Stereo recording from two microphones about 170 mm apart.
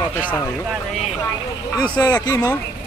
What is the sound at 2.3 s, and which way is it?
Speech, 25° left (ahead or behind).